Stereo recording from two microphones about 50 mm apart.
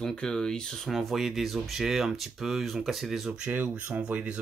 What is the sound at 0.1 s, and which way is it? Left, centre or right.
Speech, centre.